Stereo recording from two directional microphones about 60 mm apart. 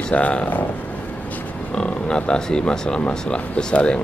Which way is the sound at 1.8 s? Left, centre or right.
Centre.